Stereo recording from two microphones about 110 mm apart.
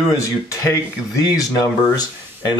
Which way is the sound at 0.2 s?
30° left (ahead or behind).